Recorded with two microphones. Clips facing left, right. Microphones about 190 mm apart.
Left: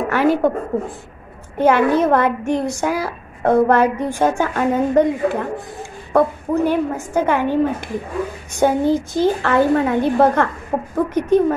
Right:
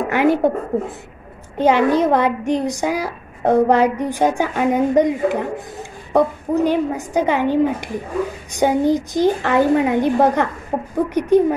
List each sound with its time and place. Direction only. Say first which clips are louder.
0.1 s a woman's voice: even; 20° right (ahead or behind)